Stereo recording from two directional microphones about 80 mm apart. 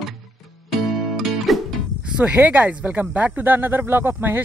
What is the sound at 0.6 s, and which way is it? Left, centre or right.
Music, centre.